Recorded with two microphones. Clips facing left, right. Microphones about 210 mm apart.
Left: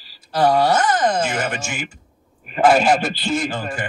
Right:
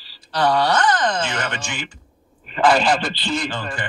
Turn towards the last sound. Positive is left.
turn(degrees=45)  # may be behind; listen again after turning